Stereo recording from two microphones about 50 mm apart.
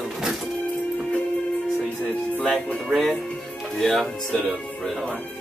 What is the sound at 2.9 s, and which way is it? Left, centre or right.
Speech, centre.